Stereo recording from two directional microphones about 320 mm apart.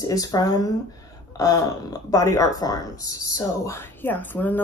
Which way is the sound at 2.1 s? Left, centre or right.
Centre.